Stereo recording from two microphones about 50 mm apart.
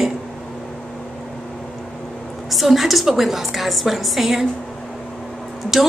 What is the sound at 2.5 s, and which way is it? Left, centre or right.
Speech, centre.